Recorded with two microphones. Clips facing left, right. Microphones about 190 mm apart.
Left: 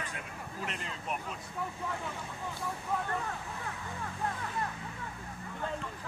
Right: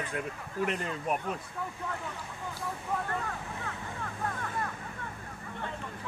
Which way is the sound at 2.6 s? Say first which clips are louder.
Right 1 dB; centre (ahead or behind).